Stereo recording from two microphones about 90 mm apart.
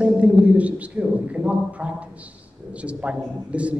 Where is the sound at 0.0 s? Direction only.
15° right (ahead or behind).